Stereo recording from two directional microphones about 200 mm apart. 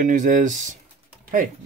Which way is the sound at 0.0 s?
40° right (ahead or behind).